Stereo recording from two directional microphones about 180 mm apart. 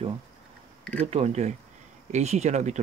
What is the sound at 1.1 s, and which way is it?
Speech, 35° right (ahead or behind).